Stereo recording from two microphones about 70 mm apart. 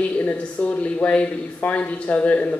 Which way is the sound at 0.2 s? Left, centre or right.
Left.